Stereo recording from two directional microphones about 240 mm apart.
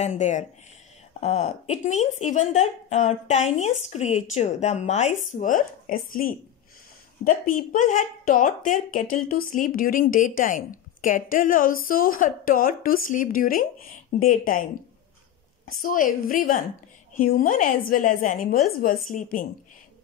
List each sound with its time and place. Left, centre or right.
0.0 s a woman's voice: left